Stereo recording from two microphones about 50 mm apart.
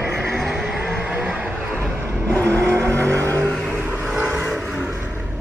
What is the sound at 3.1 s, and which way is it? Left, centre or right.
Vehicle, right.